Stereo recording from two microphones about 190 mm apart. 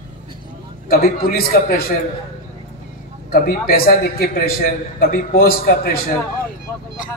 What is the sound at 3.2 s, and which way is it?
A man's voice, 50° left (ahead or behind).